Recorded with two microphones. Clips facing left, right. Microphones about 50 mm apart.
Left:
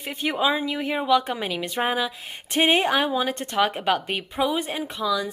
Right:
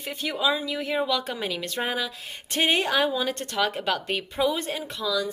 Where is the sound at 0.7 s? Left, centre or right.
Centre.